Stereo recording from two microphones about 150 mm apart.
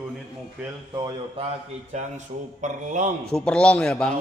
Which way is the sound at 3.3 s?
5° left (ahead or behind).